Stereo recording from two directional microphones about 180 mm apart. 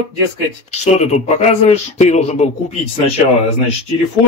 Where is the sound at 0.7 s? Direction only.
40° left (ahead or behind).